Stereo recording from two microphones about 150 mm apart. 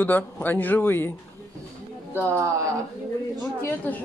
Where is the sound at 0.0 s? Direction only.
10° left (ahead or behind).